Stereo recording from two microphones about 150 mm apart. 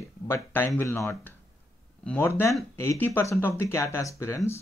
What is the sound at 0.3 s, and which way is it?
Speech, 15° left (ahead or behind).